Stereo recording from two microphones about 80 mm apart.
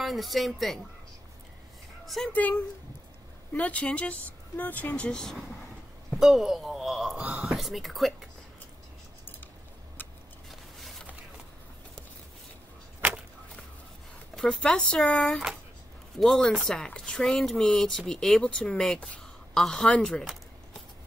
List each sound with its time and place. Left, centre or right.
0.0 s speech: centre
2.0 s speech: centre
2.3 s speech: left
6.0 s speech: centre
10.5 s a sound: centre
14.3 s speech: centre